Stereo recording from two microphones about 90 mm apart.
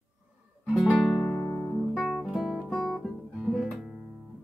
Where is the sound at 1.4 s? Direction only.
15° left (ahead or behind).